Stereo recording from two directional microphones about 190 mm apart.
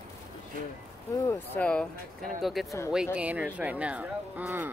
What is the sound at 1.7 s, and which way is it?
Speech, 5° left (ahead or behind).